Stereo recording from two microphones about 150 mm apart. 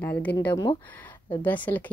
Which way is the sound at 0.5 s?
25° left (ahead or behind).